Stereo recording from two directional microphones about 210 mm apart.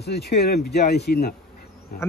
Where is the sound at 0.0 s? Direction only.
50° left (ahead or behind).